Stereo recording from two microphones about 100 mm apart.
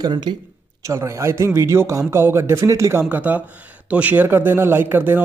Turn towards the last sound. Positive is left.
turn(degrees=-20)  # may be behind; listen again after turning